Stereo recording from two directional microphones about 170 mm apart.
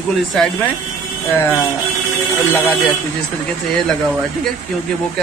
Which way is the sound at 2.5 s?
10° left (ahead or behind).